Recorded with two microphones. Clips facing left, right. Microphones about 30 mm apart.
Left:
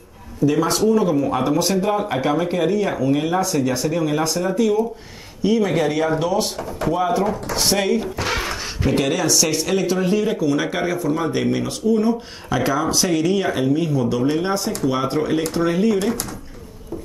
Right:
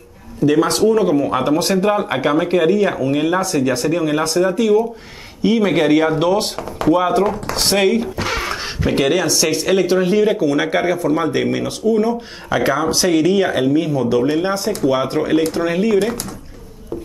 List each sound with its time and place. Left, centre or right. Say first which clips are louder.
0.5 s speech: right 4 dB; right
10.4 s speech: right 4 dB; right